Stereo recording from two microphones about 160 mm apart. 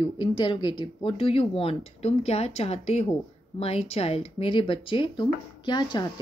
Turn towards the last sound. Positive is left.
turn(degrees=30)  # may be behind; listen again after turning